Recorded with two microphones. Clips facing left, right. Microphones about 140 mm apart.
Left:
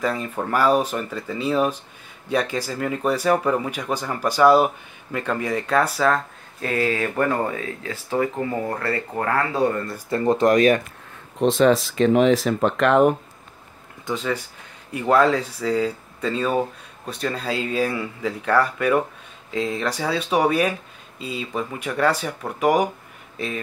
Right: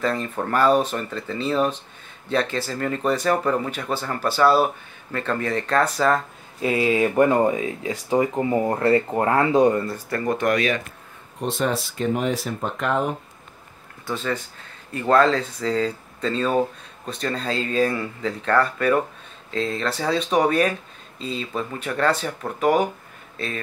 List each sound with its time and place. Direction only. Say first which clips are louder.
0.0 s speech: even; 10° left (ahead or behind)
6.1 s speech: right 1 dB; 10° right (ahead or behind)
9.9 s speech: left 4 dB; 20° left (ahead or behind)
10.3 s speech: left 6 dB; 35° left (ahead or behind)
11.3 s speech: left 7 dB; 90° left
14.0 s speech: left 1 dB; 15° left (ahead or behind)